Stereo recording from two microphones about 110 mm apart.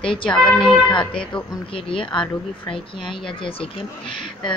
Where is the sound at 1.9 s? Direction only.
50° left (ahead or behind).